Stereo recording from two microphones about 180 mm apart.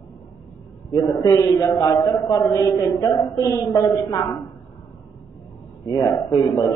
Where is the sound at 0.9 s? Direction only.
20° left (ahead or behind).